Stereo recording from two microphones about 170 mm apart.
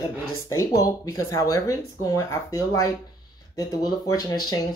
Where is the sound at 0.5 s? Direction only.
20° left (ahead or behind).